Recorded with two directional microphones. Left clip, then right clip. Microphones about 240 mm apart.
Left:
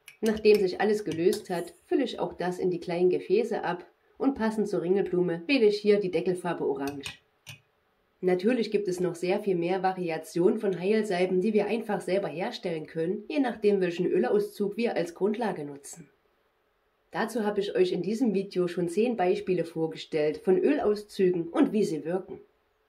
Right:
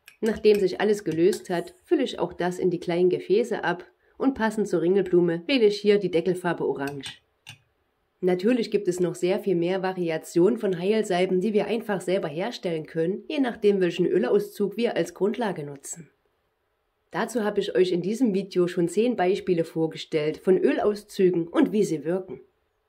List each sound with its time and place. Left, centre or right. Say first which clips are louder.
0.6 s speech: right 3 dB; right
8.3 s speech: right 2 dB; right
17.1 s speech: right 3 dB; right